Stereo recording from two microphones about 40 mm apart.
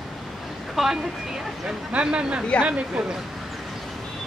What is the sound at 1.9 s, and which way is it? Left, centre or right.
Speech, right.